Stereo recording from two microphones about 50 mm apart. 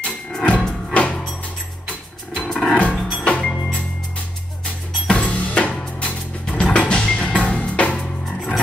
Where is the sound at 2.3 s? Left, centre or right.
Left.